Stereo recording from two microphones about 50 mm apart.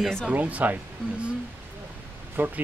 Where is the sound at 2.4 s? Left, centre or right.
Right.